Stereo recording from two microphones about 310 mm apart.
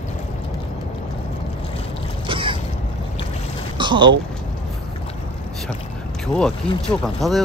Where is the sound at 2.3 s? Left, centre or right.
Centre.